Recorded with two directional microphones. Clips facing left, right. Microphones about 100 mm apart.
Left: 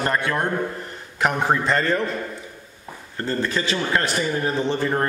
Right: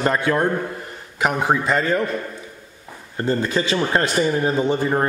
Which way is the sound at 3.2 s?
15° right (ahead or behind).